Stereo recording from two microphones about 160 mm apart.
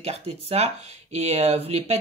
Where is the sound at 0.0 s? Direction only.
40° right (ahead or behind).